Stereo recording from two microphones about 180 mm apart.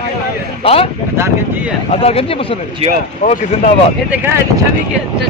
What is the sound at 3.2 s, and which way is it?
Speech, 45° left (ahead or behind).